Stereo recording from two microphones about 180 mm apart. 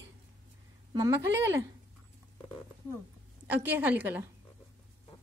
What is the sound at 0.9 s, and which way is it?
Speech, 15° right (ahead or behind).